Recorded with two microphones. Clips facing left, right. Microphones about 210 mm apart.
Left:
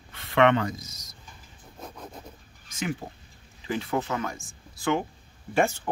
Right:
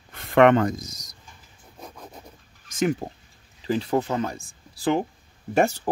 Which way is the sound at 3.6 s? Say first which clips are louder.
Right 5 dB; 35° right (ahead or behind).